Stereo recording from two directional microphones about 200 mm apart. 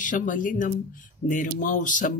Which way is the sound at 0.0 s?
40° left (ahead or behind).